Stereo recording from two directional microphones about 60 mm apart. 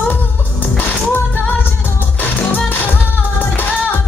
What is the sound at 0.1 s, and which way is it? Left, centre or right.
Music, left.